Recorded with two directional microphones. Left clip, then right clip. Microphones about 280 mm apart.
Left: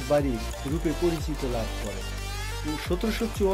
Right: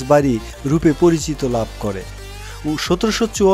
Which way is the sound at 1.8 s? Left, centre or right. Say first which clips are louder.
Right 12 dB; right.